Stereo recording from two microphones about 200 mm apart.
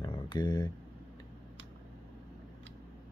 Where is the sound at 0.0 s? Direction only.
20° left (ahead or behind).